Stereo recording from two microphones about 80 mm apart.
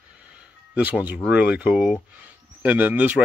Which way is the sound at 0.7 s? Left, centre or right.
Right.